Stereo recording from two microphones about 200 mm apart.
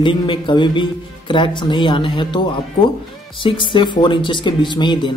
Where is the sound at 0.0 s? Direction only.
25° left (ahead or behind).